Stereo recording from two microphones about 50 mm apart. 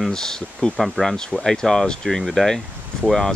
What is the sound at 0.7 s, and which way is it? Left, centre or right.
Speech, centre.